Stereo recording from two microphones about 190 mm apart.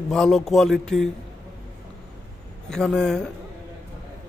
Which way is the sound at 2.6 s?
Centre (ahead or behind).